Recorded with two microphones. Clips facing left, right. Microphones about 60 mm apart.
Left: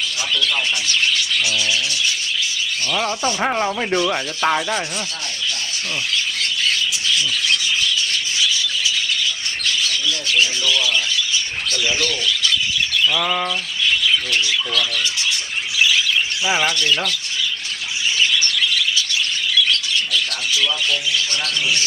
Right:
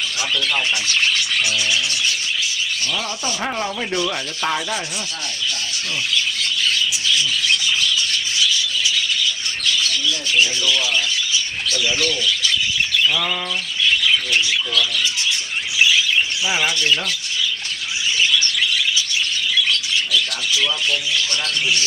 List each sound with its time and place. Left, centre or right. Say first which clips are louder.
0.3 s speech: left 1 dB; right
2.9 s speech: left 4 dB; left
3.3 s sanding: left 2 dB; left
10.3 s speech: even; centre
13.1 s bird: left 2 dB; centre